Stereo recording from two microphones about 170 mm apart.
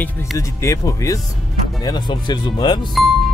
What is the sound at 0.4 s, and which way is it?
Speech, 20° left (ahead or behind).